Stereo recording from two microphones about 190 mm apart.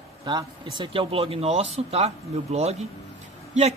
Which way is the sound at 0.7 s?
25° right (ahead or behind).